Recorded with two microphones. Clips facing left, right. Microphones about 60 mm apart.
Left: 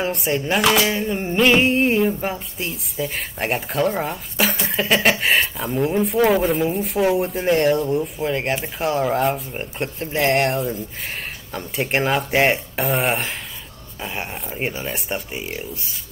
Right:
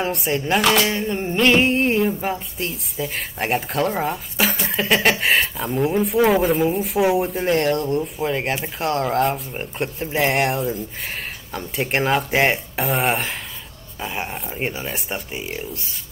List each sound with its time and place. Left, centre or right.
0.0 s speech: centre